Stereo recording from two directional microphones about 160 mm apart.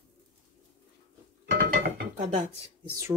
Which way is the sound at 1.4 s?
85° right.